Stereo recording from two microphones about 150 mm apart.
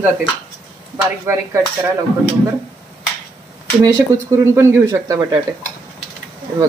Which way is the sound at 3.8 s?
20° right (ahead or behind).